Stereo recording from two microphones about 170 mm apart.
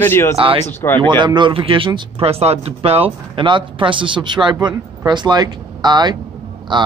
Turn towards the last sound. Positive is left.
turn(degrees=-30)  # may be behind; listen again after turning